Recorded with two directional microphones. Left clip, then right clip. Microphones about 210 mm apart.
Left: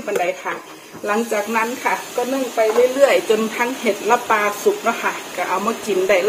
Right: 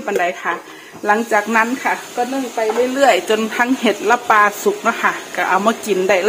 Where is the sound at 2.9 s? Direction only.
40° right (ahead or behind).